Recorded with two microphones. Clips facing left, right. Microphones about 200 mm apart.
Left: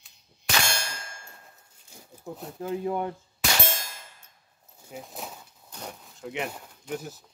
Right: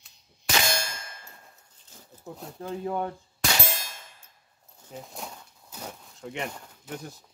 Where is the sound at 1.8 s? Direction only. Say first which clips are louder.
Left 2 dB; 10° left (ahead or behind).